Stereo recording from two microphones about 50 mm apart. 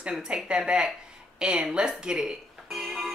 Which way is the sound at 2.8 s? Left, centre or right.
Centre.